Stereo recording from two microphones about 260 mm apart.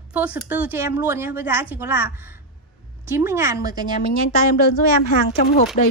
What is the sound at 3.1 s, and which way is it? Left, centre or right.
Speech, centre.